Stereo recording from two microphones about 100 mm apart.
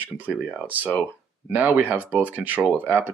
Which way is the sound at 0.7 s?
15° right (ahead or behind).